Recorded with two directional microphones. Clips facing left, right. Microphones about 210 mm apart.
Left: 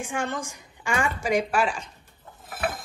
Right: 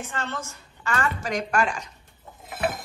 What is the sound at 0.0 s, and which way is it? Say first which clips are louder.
Speech: left 3 dB; 15° left (ahead or behind).